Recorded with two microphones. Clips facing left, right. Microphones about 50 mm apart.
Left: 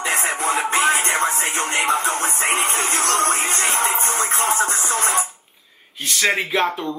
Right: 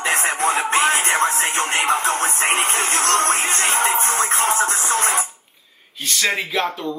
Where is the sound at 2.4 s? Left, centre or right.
Right.